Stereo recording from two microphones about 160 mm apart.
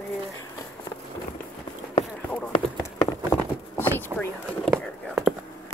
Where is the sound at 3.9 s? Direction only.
10° left (ahead or behind).